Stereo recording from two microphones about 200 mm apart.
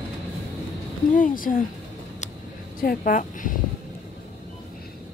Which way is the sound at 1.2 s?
45° left (ahead or behind).